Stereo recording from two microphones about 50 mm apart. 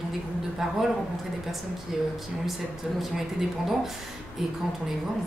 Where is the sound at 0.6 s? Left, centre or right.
Centre.